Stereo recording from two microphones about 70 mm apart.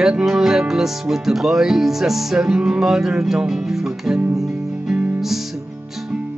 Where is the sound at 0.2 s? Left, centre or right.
Centre.